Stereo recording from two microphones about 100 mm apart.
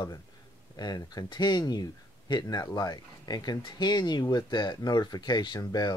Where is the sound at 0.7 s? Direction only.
45° left (ahead or behind).